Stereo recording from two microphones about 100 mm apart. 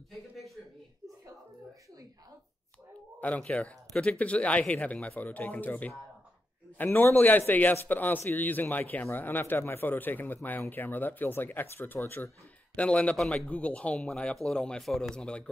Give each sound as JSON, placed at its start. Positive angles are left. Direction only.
{"t": 3.2, "sound": "speech", "side_deg": 15}